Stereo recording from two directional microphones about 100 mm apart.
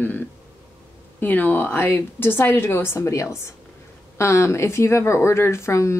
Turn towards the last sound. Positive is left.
turn(degrees=30)  # may be behind; listen again after turning